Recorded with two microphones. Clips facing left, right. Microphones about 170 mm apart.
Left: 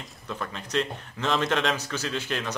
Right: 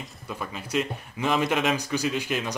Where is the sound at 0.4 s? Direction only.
10° right (ahead or behind).